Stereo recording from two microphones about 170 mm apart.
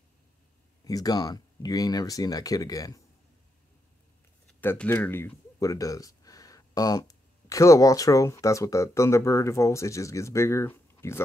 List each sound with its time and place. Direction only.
0.8 s speech: 20° left (ahead or behind)
4.5 s speech: 10° left (ahead or behind)